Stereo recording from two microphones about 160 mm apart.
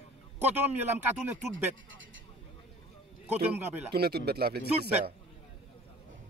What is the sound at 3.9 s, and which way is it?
Speech, 80° right.